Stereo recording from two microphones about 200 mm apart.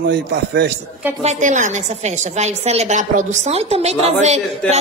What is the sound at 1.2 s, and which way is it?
A woman's voice, 35° right (ahead or behind).